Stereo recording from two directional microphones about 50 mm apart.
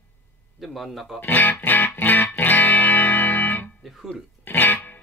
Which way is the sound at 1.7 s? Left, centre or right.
Left.